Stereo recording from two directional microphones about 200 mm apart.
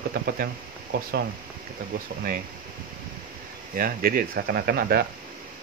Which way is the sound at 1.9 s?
45° right (ahead or behind).